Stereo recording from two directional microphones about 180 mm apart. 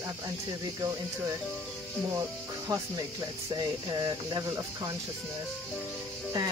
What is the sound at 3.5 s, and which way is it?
Speech, 20° right (ahead or behind).